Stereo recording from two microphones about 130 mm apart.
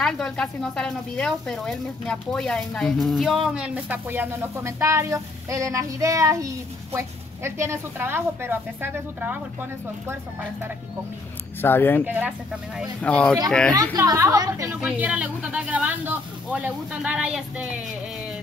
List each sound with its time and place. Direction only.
0.0 s speech: 5° left (ahead or behind); by 9.4 s 15° right (ahead or behind)
11.6 s speech: 15° left (ahead or behind)
12.0 s speech: 10° right (ahead or behind)
13.0 s speech: 10° left (ahead or behind)
13.9 s a woman's voice: 25° right (ahead or behind)
14.7 s speech: 10° right (ahead or behind)